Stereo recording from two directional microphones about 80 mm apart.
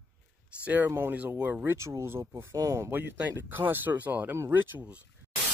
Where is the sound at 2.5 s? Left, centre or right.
Right.